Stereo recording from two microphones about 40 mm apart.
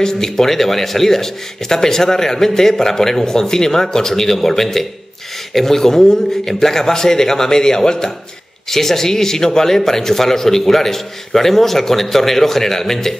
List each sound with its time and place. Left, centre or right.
0.0 s speech: centre